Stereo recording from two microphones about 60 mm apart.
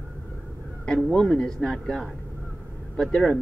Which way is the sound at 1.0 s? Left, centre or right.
Centre.